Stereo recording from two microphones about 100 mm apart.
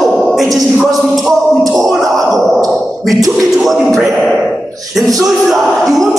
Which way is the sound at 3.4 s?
Centre (ahead or behind).